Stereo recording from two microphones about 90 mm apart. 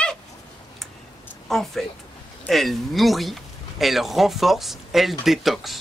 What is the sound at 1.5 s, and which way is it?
A man's voice, 5° left (ahead or behind).